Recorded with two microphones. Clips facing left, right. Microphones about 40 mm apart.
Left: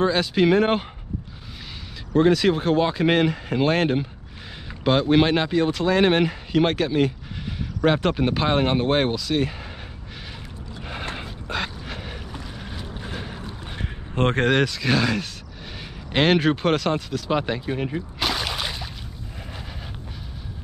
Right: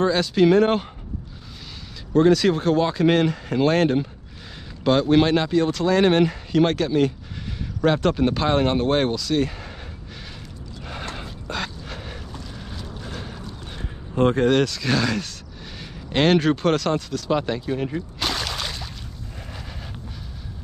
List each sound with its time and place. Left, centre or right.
0.0 s speech: centre
2.1 s speech: centre
10.9 s boat: centre
13.7 s a sound: left
14.5 s speech: centre